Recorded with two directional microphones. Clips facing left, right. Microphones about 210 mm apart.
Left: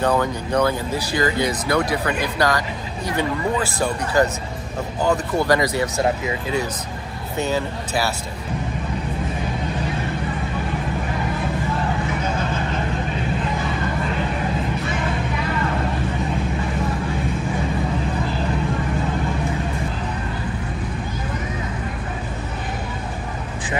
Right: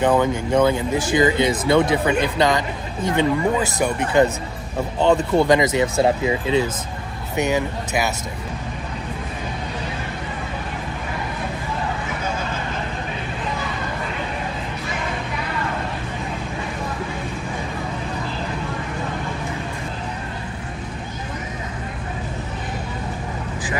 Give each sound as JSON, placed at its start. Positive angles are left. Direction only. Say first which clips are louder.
{"t": 0.0, "sound": "speech", "louder": "right 3 dB", "side_deg": -20}